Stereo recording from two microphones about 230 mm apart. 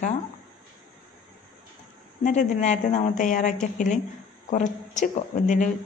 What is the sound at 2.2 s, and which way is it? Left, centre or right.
Speech, left.